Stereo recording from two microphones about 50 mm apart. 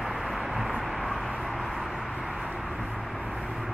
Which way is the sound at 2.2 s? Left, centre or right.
Centre.